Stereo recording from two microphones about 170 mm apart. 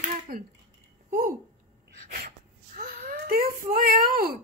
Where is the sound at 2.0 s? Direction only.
50° right (ahead or behind).